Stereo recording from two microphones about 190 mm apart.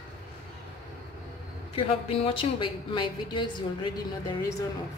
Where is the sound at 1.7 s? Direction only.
30° left (ahead or behind).